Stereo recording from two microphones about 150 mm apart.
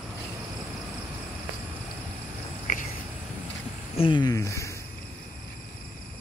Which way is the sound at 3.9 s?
35° left (ahead or behind).